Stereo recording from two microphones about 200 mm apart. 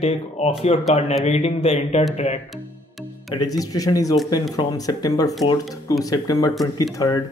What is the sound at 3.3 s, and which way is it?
Speech, 20° left (ahead or behind).